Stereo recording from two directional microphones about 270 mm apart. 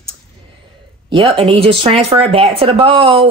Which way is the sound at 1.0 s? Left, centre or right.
Centre.